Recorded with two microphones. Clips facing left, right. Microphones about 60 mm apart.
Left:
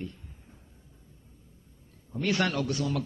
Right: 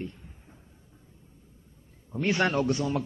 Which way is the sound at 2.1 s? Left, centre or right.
Right.